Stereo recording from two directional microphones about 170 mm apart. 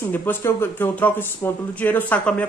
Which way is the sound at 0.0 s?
10° left (ahead or behind).